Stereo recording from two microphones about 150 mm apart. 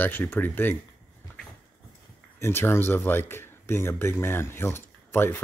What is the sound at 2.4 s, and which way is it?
A man's voice, 15° left (ahead or behind).